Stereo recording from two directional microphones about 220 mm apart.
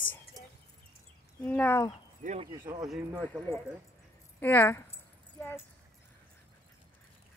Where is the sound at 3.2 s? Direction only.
5° left (ahead or behind).